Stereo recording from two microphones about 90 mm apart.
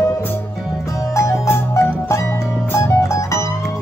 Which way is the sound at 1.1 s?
35° left (ahead or behind).